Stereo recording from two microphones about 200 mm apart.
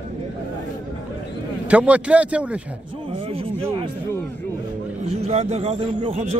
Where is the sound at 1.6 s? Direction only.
5° right (ahead or behind).